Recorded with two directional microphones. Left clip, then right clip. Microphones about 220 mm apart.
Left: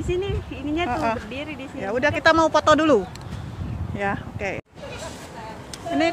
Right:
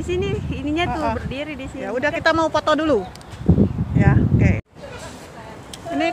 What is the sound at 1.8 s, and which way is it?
Speech, 5° left (ahead or behind).